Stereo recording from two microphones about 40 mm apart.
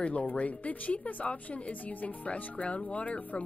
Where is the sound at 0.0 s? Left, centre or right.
Left.